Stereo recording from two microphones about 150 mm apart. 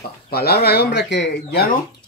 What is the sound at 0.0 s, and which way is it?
Speech, 90° left.